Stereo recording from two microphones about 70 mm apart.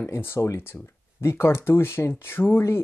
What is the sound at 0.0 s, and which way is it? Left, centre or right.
Speech, left.